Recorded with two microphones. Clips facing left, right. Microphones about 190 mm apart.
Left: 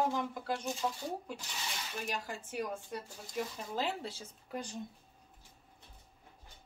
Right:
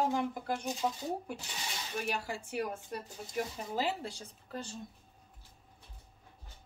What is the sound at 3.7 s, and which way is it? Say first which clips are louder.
Speech: right 2 dB; 5° right (ahead or behind).